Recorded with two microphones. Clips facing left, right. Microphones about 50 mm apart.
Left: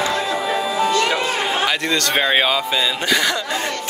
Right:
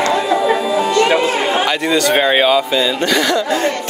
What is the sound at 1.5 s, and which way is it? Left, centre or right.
Speech, centre.